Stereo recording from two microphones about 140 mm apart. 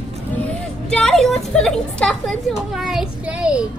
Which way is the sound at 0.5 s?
5° left (ahead or behind).